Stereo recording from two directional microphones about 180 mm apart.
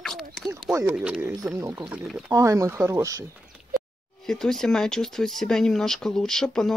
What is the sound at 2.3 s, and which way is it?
Speech, 20° right (ahead or behind).